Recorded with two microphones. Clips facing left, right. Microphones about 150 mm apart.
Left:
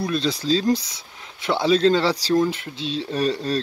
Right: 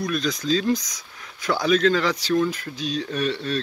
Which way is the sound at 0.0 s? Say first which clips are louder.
Left 2 dB; 30° left (ahead or behind).